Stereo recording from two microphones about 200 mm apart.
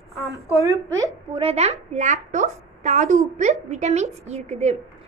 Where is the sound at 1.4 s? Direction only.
30° right (ahead or behind).